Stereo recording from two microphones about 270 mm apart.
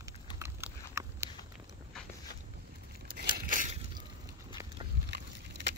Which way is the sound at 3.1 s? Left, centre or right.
Right.